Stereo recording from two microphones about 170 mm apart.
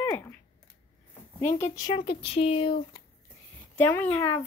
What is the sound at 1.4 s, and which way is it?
Speech, 40° left (ahead or behind).